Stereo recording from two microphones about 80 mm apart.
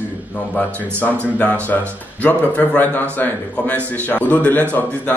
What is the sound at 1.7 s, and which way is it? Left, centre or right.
A man's voice, left.